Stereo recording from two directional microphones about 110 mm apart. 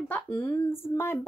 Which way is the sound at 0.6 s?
20° left (ahead or behind).